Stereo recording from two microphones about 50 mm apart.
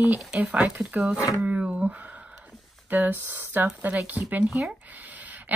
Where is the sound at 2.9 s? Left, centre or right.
Right.